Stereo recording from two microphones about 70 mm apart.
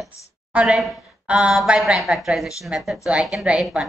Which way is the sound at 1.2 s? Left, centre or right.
Centre.